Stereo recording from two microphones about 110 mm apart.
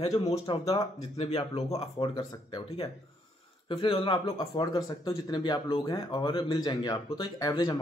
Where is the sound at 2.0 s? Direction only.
50° left (ahead or behind).